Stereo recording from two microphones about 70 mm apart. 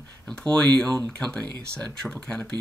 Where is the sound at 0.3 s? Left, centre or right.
Centre.